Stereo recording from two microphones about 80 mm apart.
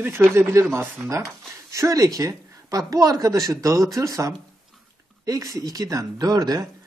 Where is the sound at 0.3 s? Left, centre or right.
Right.